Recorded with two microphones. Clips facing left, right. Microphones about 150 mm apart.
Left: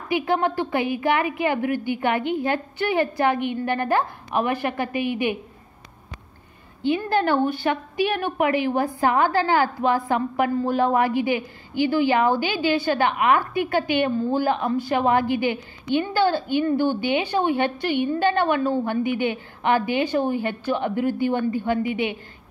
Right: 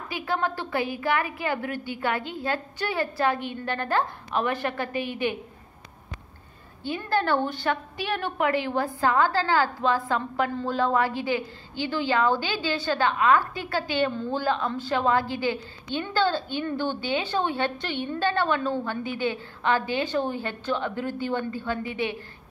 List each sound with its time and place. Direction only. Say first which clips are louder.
0.1 s a woman's voice: left 7 dB; 20° left (ahead or behind)
6.8 s a woman's voice: left 5 dB; 15° left (ahead or behind)